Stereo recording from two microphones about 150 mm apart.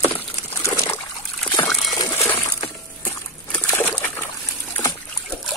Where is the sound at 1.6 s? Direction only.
25° left (ahead or behind).